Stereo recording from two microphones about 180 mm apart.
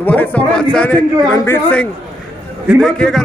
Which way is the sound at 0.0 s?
10° left (ahead or behind).